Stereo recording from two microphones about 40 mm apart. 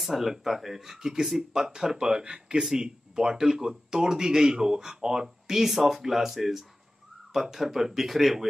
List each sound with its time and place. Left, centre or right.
0.0 s speech: centre